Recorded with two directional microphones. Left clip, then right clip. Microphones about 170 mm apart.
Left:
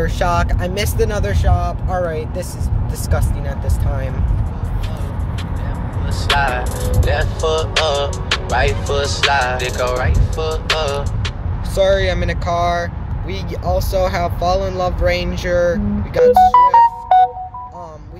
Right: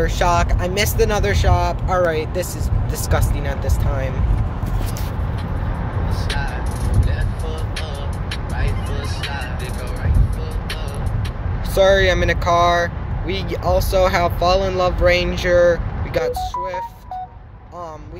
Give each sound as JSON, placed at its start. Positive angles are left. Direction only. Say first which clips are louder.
{"t": 0.0, "sound": "speech", "louder": "even", "side_deg": 5}
{"t": 6.2, "sound": "speech", "louder": "left 13 dB", "side_deg": 5}